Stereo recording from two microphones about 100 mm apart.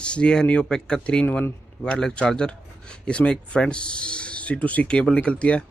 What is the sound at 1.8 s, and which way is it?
Speech, 10° left (ahead or behind).